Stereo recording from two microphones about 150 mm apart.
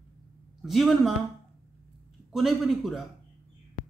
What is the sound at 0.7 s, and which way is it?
Speech, centre (ahead or behind).